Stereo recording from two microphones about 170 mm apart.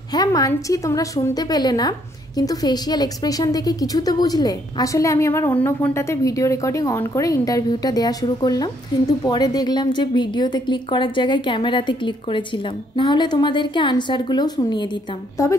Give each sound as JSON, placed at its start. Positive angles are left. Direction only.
{"t": 0.1, "sound": "a woman's voice", "side_deg": 20}